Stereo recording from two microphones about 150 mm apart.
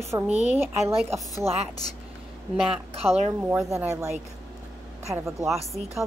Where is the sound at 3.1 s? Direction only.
45° right (ahead or behind).